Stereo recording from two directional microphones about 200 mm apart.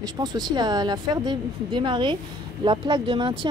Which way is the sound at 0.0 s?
20° right (ahead or behind).